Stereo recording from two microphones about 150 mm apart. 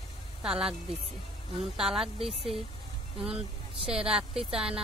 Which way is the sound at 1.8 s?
5° right (ahead or behind).